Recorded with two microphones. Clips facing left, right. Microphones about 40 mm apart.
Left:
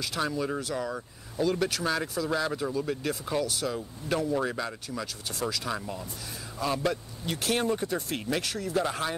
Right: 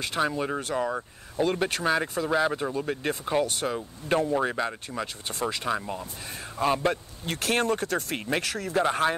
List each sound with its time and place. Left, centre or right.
0.2 s speech: right
5.8 s speech: right
6.6 s speech: right
7.2 s speech: right
8.8 s speech: right